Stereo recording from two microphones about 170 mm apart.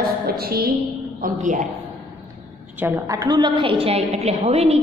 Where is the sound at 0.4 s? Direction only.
65° right (ahead or behind).